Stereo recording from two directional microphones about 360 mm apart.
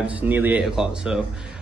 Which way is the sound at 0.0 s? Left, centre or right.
Centre.